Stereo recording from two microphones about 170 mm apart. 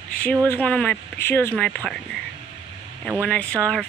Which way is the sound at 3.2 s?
10° left (ahead or behind).